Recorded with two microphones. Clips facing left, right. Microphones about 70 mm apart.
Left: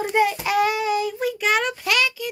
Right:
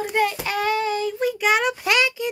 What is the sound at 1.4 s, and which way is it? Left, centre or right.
Speech, centre.